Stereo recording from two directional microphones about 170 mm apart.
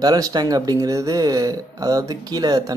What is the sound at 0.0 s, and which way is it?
Speech, 20° right (ahead or behind).